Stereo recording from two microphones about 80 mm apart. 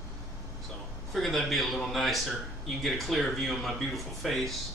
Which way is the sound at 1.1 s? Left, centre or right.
Centre.